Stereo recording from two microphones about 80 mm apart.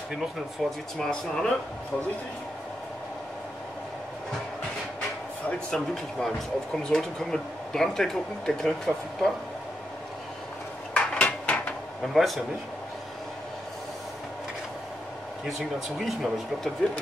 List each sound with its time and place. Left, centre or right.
0.2 s speech: centre
5.5 s speech: centre
10.9 s dishes: centre
12.1 s speech: centre
16.0 s speech: centre